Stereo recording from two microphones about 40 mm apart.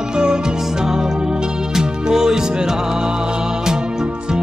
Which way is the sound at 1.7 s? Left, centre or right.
Centre.